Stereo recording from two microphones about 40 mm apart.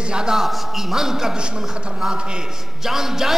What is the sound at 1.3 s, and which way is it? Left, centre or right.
A man's voice, right.